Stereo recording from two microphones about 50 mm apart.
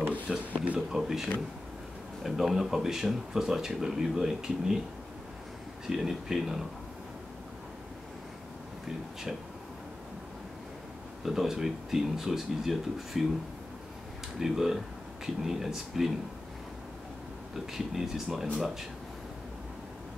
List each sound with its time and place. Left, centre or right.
0.3 s speech: centre
0.7 s a sound: centre
2.2 s speech: centre
5.9 s speech: centre
11.2 s speech: centre
14.4 s speech: centre
17.7 s speech: centre